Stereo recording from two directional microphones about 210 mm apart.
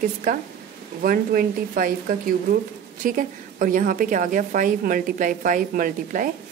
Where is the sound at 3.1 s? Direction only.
40° right (ahead or behind).